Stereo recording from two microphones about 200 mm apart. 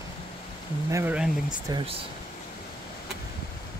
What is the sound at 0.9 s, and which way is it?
Speech, 5° right (ahead or behind).